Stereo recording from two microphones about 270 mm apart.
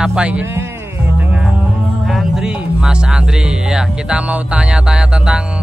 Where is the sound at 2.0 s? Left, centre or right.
Centre.